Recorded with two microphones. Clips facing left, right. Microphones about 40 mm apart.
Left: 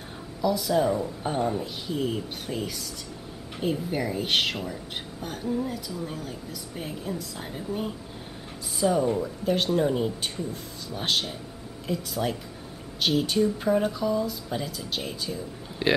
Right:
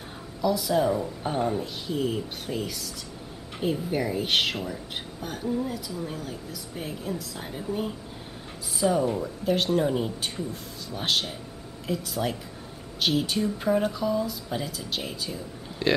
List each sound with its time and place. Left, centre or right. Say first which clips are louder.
0.4 s speech: even; centre
15.8 s speech: even; centre